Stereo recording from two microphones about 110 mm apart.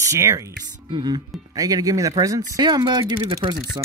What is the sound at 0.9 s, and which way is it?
Speech, 40° right (ahead or behind).